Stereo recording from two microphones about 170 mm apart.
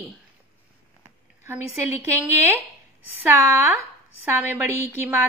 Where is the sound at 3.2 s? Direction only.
15° right (ahead or behind).